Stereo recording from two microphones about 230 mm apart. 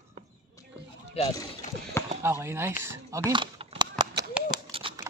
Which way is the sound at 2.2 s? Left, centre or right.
Centre.